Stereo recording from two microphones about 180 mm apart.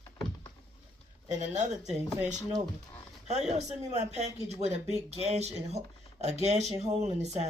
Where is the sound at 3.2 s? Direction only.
35° right (ahead or behind).